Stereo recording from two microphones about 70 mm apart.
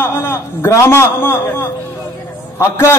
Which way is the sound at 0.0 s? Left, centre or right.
Left.